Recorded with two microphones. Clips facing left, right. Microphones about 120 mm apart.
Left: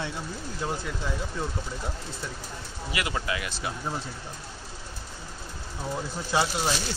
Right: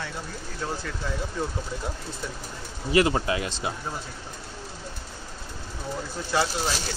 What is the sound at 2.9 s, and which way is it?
Speech, 35° right (ahead or behind).